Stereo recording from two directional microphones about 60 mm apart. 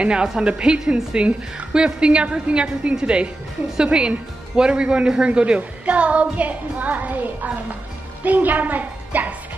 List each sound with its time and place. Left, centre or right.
0.0 s a woman's voice: centre